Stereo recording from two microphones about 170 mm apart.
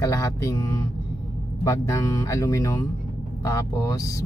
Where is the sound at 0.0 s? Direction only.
20° left (ahead or behind).